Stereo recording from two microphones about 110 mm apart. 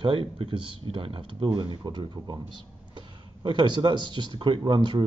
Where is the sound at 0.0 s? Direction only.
55° right (ahead or behind).